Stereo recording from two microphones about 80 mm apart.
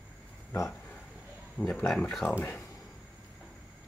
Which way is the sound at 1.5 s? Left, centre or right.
Centre.